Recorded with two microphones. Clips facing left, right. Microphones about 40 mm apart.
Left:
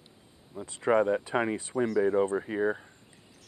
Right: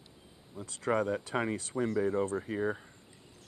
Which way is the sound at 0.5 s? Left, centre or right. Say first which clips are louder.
Left 6 dB; left.